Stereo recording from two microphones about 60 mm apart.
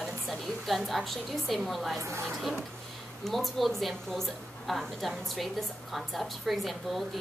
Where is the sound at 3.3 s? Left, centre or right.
Centre.